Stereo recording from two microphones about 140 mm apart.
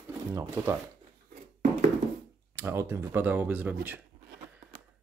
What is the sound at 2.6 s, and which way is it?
Speech, 20° right (ahead or behind).